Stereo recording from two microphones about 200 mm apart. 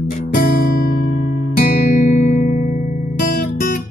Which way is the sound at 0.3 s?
45° left (ahead or behind).